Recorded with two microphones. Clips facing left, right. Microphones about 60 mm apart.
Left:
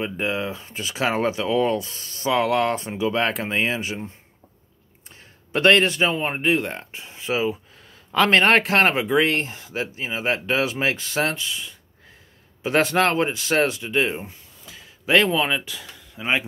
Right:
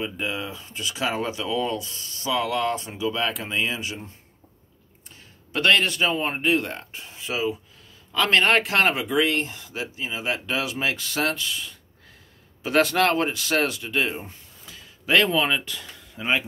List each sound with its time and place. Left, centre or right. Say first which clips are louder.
0.0 s speech: left 4 dB; left
5.1 s a sound: left 3 dB; left
6.1 s speech: left 1 dB; centre
11.4 s speech: even; centre
12.6 s speech: left 1 dB; left
15.2 s speech: left 1 dB; centre